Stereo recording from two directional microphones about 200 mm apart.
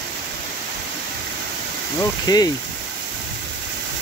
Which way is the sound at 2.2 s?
20° left (ahead or behind).